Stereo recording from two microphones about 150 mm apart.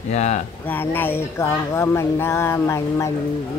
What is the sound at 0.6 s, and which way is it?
Speech, 15° left (ahead or behind).